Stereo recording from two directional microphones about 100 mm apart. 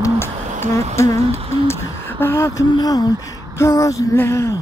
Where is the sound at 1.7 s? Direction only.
25° left (ahead or behind).